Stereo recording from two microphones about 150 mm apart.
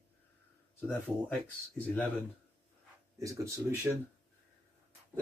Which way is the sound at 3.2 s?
20° right (ahead or behind).